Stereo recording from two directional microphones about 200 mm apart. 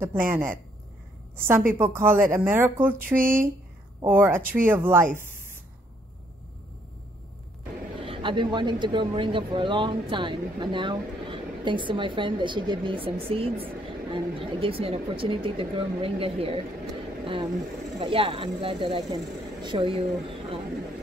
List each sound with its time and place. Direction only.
0.0 s a woman's voice: 10° right (ahead or behind)
8.0 s a man's voice: 25° right (ahead or behind)
17.9 s a man's voice: 25° right (ahead or behind)